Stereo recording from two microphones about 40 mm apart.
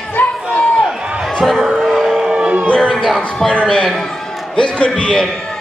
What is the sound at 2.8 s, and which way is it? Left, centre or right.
A man's voice, centre.